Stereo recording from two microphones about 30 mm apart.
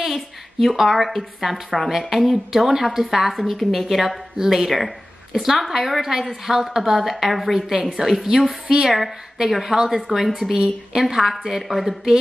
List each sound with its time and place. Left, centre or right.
0.0 s a woman's voice: centre
2.1 s a woman's voice: centre
4.6 s a woman's voice: centre
5.3 s a woman's voice: centre
5.6 s a woman's voice: centre
8.7 s a woman's voice: right
9.5 s a woman's voice: centre